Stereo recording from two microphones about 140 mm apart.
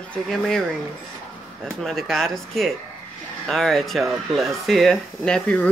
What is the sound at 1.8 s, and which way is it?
A woman's voice, 5° left (ahead or behind).